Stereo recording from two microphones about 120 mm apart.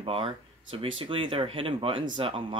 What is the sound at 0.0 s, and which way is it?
Speech, 50° right (ahead or behind).